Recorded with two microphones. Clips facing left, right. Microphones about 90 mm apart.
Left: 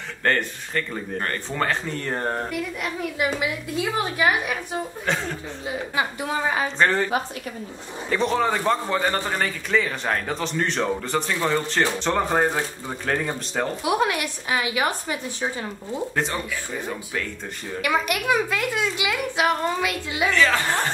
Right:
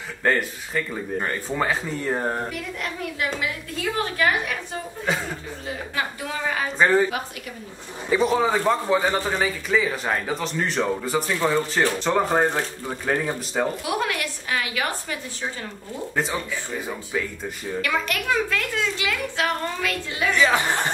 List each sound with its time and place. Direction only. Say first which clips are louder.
0.2 s a man's voice: right 1 dB; 5° right (ahead or behind)
3.2 s a child's voice: left 3 dB; 10° left (ahead or behind)
5.7 s a woman's voice: left 3 dB; 20° left (ahead or behind)
6.8 s speech: right 3 dB; 10° right (ahead or behind)
8.1 s a man's voice: right 2 dB; 5° right (ahead or behind)
13.8 s a woman's voice: left 3 dB; 20° left (ahead or behind)
16.8 s a man's voice: right 1 dB; 5° right (ahead or behind)
17.8 s a child's voice: left 3 dB; 15° left (ahead or behind)
20.3 s speech: right 1 dB; 15° right (ahead or behind)